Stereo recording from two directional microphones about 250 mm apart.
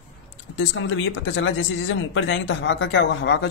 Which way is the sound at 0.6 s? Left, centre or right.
Left.